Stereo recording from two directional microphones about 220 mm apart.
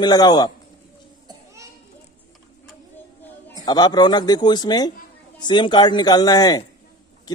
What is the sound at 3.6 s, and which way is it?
Speech, 20° left (ahead or behind).